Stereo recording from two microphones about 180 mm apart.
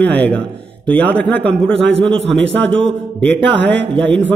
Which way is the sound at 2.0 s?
30° right (ahead or behind).